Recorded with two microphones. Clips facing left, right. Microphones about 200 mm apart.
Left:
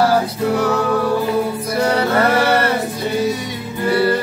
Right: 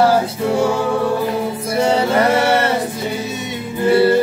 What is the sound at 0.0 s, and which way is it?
Music, 25° right (ahead or behind).